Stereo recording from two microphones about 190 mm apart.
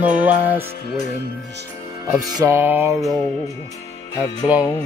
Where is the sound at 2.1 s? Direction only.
10° right (ahead or behind).